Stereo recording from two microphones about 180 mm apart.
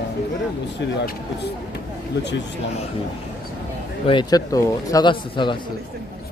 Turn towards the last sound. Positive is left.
turn(degrees=25)  # may be behind; listen again after turning